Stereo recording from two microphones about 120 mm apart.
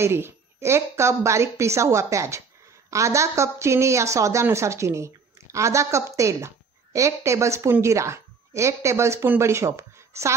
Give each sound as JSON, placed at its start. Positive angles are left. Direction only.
{"t": 0.0, "sound": "a woman's voice", "side_deg": -20}